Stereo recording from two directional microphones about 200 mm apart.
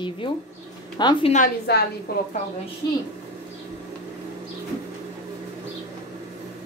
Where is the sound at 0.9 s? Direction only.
20° left (ahead or behind).